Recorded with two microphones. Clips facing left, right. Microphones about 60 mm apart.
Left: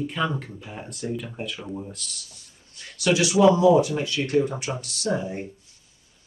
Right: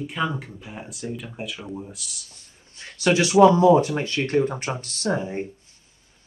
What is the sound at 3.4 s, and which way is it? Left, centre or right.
Speech, right.